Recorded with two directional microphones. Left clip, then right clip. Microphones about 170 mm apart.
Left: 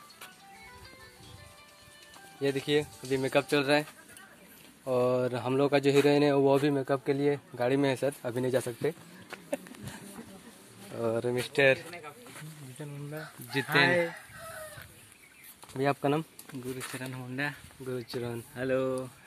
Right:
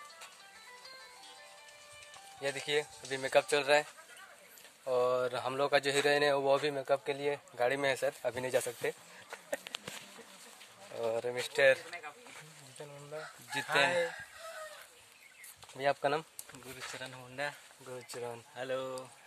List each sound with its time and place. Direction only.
2.4 s a man's voice: 10° right (ahead or behind)
4.8 s speech: 10° left (ahead or behind)
5.2 s a man's voice: 5° right (ahead or behind)
8.1 s speech: 20° right (ahead or behind)
11.0 s speech: 5° right (ahead or behind)
13.1 s speech: centre (ahead or behind)
15.8 s speech: 25° right (ahead or behind)
16.5 s a sound: 75° left (ahead or behind)
17.0 s a man's voice: 15° right (ahead or behind)